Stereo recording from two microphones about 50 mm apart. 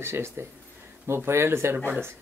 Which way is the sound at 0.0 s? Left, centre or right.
Right.